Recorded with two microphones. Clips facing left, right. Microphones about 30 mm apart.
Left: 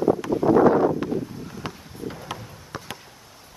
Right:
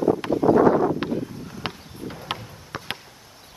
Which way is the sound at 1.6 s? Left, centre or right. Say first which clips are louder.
Right 4 dB; right.